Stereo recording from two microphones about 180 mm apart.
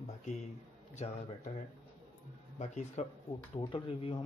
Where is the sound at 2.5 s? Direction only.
40° left (ahead or behind).